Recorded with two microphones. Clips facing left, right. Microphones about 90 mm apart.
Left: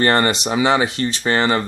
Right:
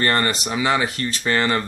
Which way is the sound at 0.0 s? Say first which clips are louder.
Left 4 dB; 30° left (ahead or behind).